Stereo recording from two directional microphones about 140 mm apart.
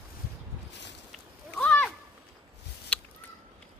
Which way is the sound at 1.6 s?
10° left (ahead or behind).